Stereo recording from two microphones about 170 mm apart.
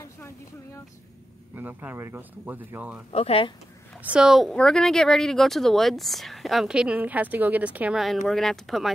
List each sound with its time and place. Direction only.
1.5 s speech: 10° right (ahead or behind)
3.1 s speech: 35° left (ahead or behind)
4.0 s speech: 5° right (ahead or behind)